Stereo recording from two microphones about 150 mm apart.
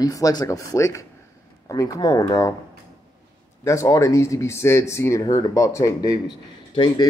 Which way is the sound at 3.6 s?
20° left (ahead or behind).